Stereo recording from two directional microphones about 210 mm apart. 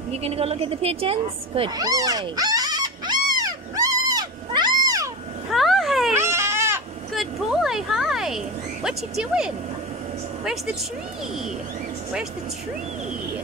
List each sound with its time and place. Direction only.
0.1 s speech: 30° right (ahead or behind)
3.3 s cat: 15° right (ahead or behind)
5.5 s cat: centre (ahead or behind)
6.1 s baby cry: 10° right (ahead or behind)
7.2 s a sound: centre (ahead or behind)
8.8 s speech: 5° right (ahead or behind)